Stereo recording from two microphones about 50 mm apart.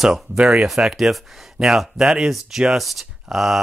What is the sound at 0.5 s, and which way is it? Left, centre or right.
Speech, centre.